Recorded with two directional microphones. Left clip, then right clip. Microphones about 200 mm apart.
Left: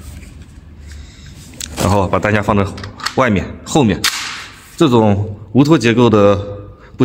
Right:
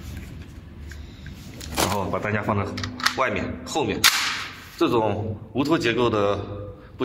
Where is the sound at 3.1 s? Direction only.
50° left (ahead or behind).